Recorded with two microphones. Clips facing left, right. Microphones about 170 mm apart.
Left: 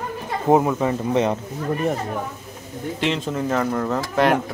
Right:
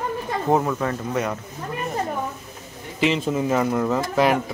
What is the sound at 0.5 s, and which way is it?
Speech, 15° left (ahead or behind).